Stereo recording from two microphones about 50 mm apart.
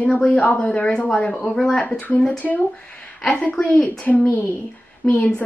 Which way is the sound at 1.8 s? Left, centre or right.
Left.